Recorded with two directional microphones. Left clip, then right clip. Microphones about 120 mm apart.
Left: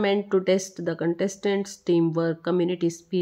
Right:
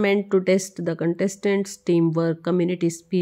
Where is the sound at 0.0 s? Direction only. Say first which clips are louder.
Right 2 dB; 25° right (ahead or behind).